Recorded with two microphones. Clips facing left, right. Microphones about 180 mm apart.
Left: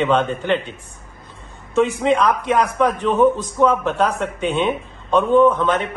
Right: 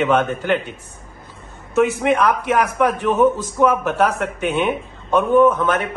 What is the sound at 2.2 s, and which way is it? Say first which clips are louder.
A man's voice: even; 10° right (ahead or behind).